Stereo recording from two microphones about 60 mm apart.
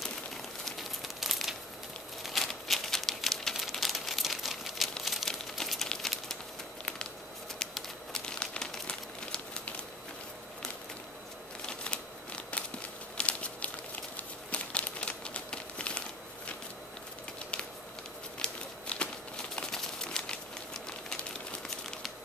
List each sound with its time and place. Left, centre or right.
0.7 s crumpling: centre
2.2 s a sound: centre
3.7 s crumpling: centre
5.0 s a sound: centre
5.3 s crumpling: centre
7.5 s crumpling: centre
11.6 s a sound: centre
14.5 s crumpling: left
18.4 s crumpling: centre